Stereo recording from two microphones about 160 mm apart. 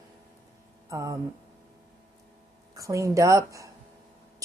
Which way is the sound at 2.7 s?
20° right (ahead or behind).